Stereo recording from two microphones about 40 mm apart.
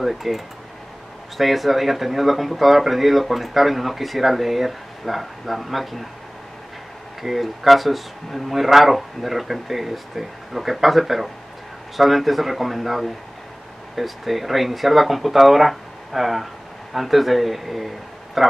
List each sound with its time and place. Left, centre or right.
0.0 s speech: centre
1.4 s speech: centre
7.2 s a man's voice: centre